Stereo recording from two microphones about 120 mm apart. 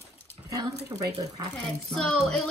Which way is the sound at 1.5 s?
5° left (ahead or behind).